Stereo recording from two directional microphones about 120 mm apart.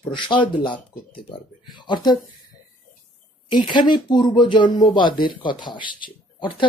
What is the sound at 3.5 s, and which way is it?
Speech, 40° left (ahead or behind).